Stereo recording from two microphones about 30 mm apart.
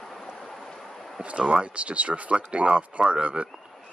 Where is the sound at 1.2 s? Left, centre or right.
Right.